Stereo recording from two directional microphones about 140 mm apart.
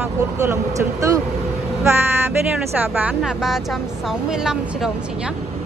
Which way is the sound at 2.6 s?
10° right (ahead or behind).